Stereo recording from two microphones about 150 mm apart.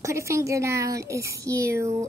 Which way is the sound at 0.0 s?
20° right (ahead or behind).